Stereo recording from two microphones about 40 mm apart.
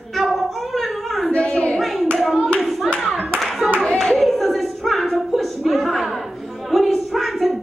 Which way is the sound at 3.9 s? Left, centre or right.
Centre.